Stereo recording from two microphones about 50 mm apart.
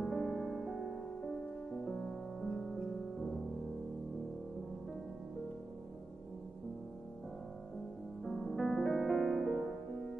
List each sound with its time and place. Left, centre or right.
0.0 s music: centre
1.7 s music: centre
8.2 s music: centre